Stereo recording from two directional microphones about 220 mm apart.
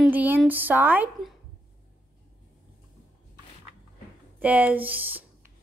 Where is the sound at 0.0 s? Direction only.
5° right (ahead or behind).